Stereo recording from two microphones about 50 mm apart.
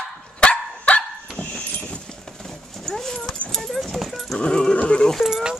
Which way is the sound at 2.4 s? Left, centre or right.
Centre.